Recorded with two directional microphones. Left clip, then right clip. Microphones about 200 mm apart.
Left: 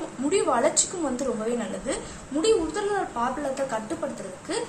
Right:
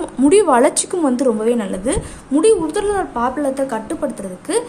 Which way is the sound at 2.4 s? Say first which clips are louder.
Right 8 dB; 55° right (ahead or behind).